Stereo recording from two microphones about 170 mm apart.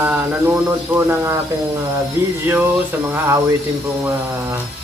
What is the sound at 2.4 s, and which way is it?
Speech, 10° right (ahead or behind).